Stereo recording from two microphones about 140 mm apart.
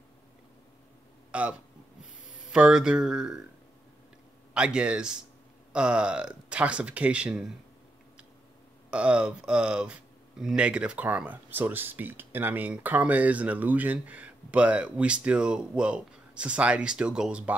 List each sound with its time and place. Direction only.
1.3 s speech: 10° right (ahead or behind)
2.5 s speech: 5° right (ahead or behind)
4.6 s speech: 5° right (ahead or behind)
8.9 s speech: 10° right (ahead or behind)